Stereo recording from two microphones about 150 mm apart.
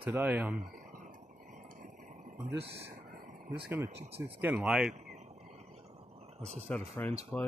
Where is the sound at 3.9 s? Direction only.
45° right (ahead or behind).